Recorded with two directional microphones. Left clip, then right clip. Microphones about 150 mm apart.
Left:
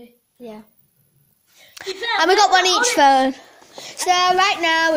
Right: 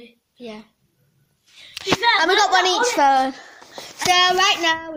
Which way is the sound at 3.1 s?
35° left (ahead or behind).